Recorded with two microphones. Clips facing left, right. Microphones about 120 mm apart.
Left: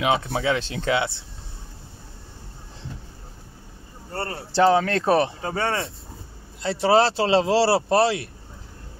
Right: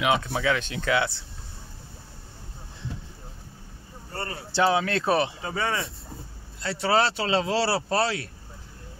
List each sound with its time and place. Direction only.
0.0 s speech: 25° left (ahead or behind)
4.1 s speech: 35° left (ahead or behind)
6.6 s speech: 25° left (ahead or behind)